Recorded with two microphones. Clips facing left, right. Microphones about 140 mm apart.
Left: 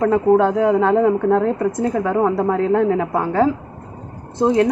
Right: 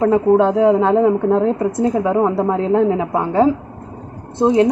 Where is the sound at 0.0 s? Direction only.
20° right (ahead or behind).